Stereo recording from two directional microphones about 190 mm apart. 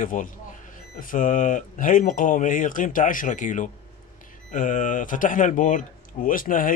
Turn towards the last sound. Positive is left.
turn(degrees=45)  # may be behind; listen again after turning